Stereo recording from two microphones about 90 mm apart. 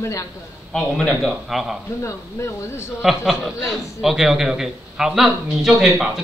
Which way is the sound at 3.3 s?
Centre (ahead or behind).